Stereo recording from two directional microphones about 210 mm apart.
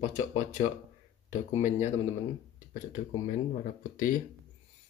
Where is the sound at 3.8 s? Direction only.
40° left (ahead or behind).